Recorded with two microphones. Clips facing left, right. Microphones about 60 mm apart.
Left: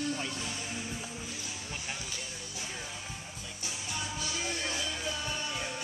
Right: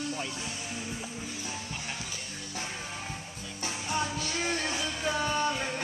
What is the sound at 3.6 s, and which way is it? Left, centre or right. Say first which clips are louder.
Music: right 8 dB; right.